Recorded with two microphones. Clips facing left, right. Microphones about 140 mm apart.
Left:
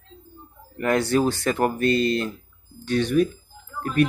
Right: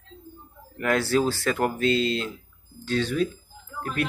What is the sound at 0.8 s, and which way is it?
Speech, 15° left (ahead or behind).